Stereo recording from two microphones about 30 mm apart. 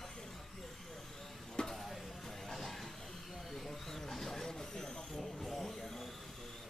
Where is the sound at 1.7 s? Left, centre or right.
Centre.